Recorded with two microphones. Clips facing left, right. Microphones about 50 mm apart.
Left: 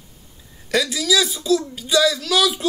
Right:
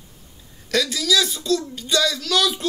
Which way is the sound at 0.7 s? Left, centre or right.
Centre.